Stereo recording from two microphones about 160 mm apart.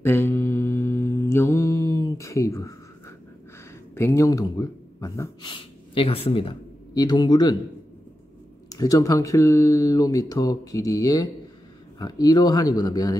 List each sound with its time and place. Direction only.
0.0 s mantra: 15° left (ahead or behind)
3.9 s speech: 15° left (ahead or behind)
8.6 s speech: 20° left (ahead or behind)